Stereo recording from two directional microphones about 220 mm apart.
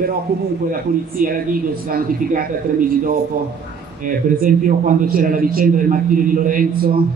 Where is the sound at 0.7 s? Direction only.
40° right (ahead or behind).